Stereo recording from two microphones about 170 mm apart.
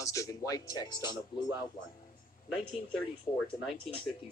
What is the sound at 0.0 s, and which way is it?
Speech, 20° left (ahead or behind).